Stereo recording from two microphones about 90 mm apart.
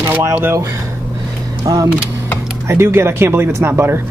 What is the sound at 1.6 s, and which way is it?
Speech, 40° right (ahead or behind).